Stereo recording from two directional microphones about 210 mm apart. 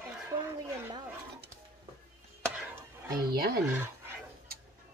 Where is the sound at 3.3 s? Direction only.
45° right (ahead or behind).